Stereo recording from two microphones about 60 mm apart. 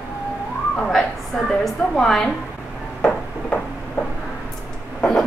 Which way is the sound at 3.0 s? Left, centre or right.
Left.